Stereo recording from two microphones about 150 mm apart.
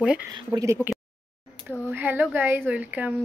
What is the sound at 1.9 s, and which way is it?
Speech, 15° right (ahead or behind).